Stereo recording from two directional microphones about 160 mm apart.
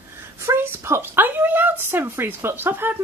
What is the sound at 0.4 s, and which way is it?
A woman's voice, 15° right (ahead or behind).